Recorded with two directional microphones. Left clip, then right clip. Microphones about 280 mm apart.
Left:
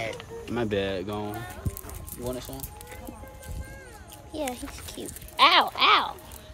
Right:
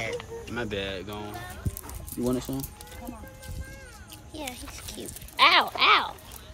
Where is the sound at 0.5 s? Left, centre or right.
Left.